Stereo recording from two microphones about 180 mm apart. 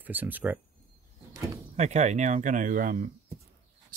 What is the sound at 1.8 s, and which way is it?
Speech, 40° right (ahead or behind).